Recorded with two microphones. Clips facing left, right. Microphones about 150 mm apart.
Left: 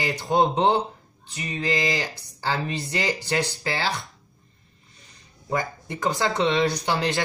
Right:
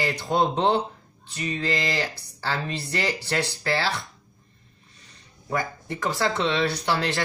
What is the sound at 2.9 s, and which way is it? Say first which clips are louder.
Speech: even; 15° left (ahead or behind).